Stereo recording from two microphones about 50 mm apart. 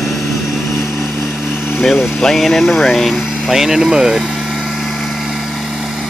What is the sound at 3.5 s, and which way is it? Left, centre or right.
Speech, centre.